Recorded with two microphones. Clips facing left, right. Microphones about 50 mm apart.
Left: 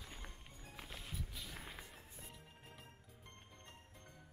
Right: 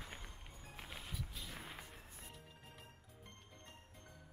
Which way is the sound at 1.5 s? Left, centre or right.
Centre.